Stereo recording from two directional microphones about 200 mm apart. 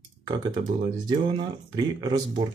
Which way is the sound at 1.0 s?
20° right (ahead or behind).